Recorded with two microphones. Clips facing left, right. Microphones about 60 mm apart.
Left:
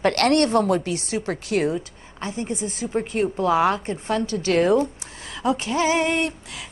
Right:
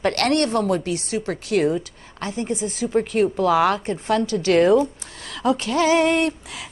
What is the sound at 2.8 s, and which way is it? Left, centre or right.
Speech, centre.